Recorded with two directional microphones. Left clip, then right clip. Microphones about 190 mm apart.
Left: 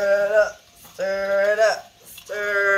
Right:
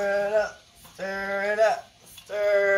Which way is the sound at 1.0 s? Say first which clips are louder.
Left 7 dB; 15° left (ahead or behind).